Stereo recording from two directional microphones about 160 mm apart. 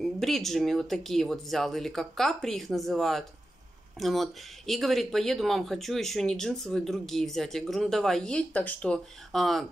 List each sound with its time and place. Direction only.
0.0 s speech: centre (ahead or behind)